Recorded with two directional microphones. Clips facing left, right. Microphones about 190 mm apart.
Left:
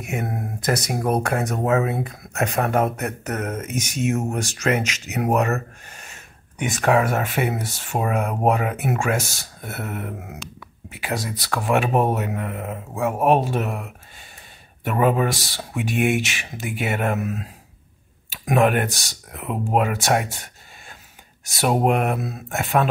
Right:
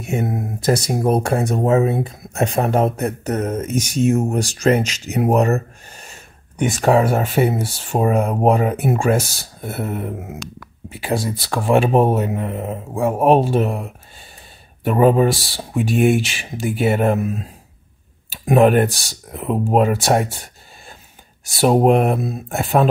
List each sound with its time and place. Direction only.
0.0 s speech: 30° right (ahead or behind)
14.9 s speech: 30° right (ahead or behind)
21.5 s speech: 30° right (ahead or behind)